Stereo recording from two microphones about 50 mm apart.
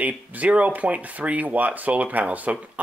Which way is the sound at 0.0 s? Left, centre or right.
Right.